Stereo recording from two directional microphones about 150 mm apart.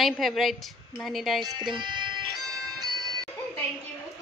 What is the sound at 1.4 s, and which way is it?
Music, 30° right (ahead or behind).